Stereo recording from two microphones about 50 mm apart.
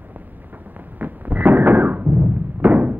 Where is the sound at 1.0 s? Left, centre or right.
Right.